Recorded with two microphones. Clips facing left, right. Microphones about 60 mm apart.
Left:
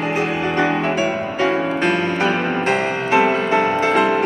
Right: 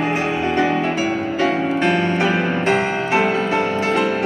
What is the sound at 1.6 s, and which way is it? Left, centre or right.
Music, centre.